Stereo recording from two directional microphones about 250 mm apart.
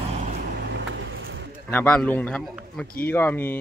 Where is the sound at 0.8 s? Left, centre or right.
Right.